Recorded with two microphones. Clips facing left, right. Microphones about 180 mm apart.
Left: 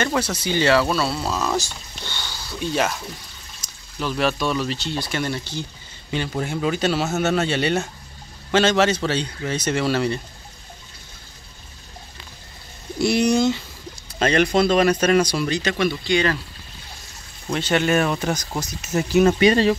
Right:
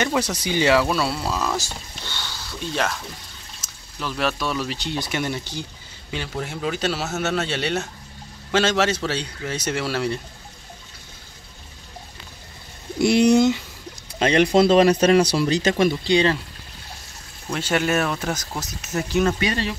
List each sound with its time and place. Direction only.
0.0 s speech: 15° right (ahead or behind); by 3.0 s 5° left (ahead or behind)
4.0 s speech: centre (ahead or behind); by 5.7 s 15° right (ahead or behind)
6.1 s speech: centre (ahead or behind)
7.1 s speech: 10° left (ahead or behind)
7.3 s speech: centre (ahead or behind)
8.5 s speech: 5° right (ahead or behind)
13.0 s speech: 20° right (ahead or behind)
17.5 s speech: 5° right (ahead or behind)
19.4 s speech: 35° left (ahead or behind)